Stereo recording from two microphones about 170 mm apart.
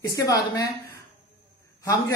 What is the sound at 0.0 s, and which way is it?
Speech, 20° left (ahead or behind).